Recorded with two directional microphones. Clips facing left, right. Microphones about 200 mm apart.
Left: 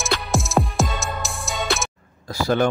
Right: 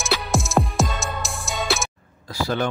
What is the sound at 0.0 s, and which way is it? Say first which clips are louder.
Music: even; centre (ahead or behind).